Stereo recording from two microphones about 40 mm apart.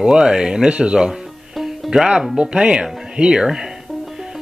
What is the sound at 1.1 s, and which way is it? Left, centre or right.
Music, centre.